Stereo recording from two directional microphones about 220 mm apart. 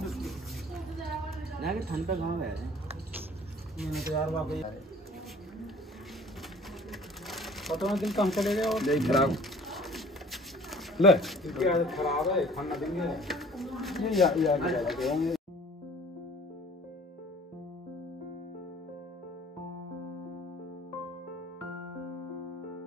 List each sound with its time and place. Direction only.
0.0 s a sound: centre (ahead or behind)
1.8 s speech: 45° right (ahead or behind)
3.7 s a man's voice: centre (ahead or behind)
6.9 s speech: centre (ahead or behind)